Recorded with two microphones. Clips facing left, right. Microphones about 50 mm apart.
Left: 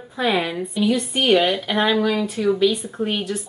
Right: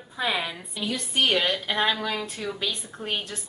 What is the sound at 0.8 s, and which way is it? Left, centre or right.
A woman's voice, centre.